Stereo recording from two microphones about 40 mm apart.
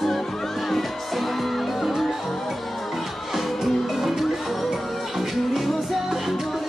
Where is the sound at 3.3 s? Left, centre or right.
Centre.